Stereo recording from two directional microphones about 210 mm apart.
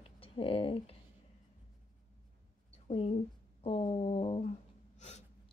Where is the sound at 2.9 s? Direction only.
30° left (ahead or behind).